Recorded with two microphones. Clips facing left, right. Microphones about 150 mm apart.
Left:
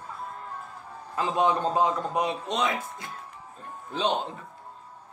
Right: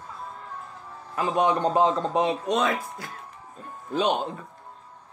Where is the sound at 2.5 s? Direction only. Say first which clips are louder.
Right 4 dB; 15° left (ahead or behind).